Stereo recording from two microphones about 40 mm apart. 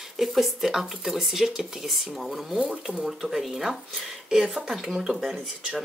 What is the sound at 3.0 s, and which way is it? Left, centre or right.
Speech, centre.